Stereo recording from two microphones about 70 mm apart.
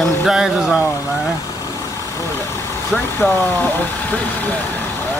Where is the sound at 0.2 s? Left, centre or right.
Centre.